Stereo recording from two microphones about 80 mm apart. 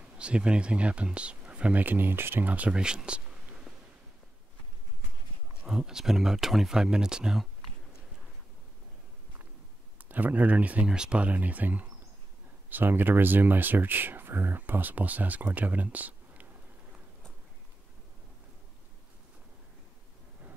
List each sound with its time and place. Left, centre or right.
0.2 s speech: centre
5.5 s speech: centre
9.9 s speech: right